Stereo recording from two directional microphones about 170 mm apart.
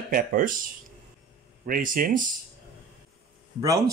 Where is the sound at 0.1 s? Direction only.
55° right (ahead or behind).